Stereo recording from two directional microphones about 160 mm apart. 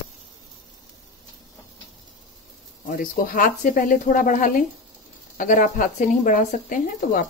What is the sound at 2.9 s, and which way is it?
Speech, 55° left (ahead or behind).